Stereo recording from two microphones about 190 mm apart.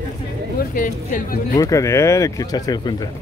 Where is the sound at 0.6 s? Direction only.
50° left (ahead or behind).